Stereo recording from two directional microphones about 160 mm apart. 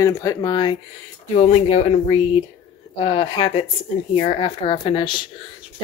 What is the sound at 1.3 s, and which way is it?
Speech, 45° left (ahead or behind).